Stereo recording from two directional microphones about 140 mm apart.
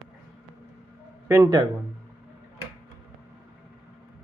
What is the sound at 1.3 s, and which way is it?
Speech, 20° right (ahead or behind).